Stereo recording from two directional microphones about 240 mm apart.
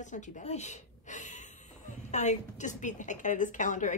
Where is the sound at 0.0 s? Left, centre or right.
Left.